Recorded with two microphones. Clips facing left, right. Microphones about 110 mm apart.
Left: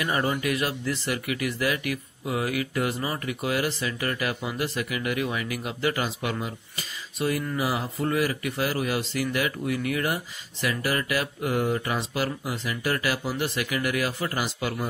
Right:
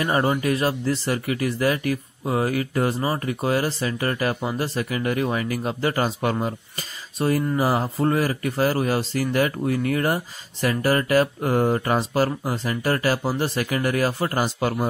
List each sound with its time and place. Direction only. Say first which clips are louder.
0.0 s speech: right 5 dB; 35° right (ahead or behind)